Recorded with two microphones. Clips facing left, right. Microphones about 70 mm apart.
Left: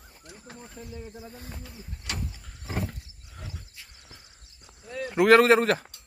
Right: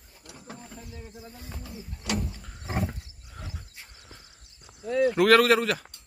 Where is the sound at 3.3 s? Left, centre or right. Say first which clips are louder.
Right 1 dB; centre.